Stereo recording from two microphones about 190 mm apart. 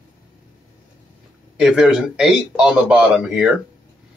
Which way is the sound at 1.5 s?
Centre (ahead or behind).